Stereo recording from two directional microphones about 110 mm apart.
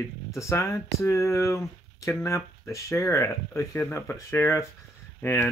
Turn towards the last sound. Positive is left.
turn(degrees=20)  # may be behind; listen again after turning